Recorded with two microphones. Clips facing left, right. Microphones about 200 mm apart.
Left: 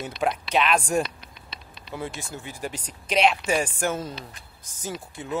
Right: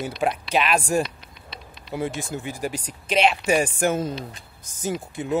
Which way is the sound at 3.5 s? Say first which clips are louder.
Right 4 dB; 15° right (ahead or behind).